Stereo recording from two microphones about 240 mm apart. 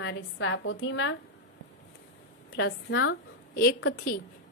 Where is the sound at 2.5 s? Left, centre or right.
Left.